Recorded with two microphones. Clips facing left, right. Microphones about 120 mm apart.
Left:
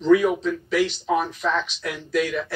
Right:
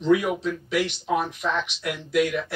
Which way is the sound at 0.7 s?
15° right (ahead or behind).